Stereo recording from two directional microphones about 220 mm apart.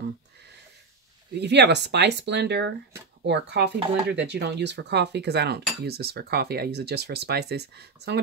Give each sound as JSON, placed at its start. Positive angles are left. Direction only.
{"t": 1.4, "sound": "cutlery", "side_deg": -50}